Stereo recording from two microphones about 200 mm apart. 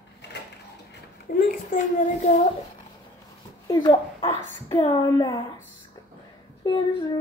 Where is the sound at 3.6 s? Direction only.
20° left (ahead or behind).